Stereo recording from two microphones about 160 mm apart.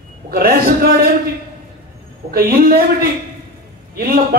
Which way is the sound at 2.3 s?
70° right (ahead or behind).